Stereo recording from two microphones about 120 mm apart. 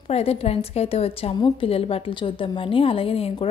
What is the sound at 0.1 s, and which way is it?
A woman's voice, 60° left (ahead or behind).